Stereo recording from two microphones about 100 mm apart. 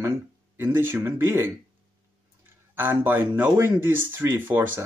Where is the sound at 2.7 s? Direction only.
20° right (ahead or behind).